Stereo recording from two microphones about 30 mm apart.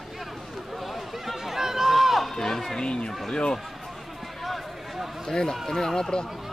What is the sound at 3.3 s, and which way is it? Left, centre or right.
Speech, left.